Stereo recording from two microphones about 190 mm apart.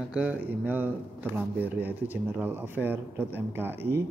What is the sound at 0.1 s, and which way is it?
Speech, 5° right (ahead or behind).